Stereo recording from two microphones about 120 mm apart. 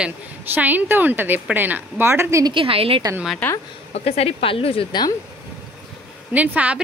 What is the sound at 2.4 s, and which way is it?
Speech, 45° right (ahead or behind).